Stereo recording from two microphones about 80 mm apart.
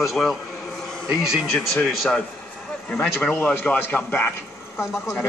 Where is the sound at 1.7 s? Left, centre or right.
Centre.